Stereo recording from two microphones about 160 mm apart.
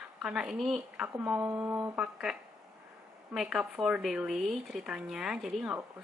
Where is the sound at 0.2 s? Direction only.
5° right (ahead or behind).